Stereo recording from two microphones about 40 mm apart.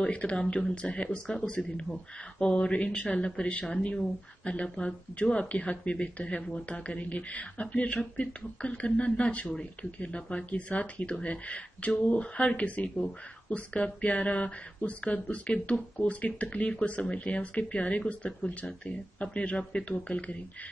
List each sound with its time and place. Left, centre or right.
0.0 s speech: left
4.7 s speech: left